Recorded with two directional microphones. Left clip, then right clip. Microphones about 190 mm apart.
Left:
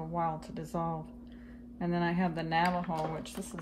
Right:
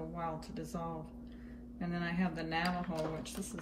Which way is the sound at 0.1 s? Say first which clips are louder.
Left 7 dB; 50° left (ahead or behind).